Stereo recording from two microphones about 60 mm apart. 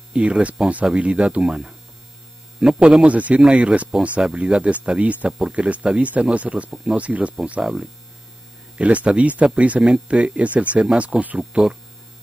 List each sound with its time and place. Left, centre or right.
0.1 s a man's voice: right
7.6 s a man's voice: centre
8.7 s speech: right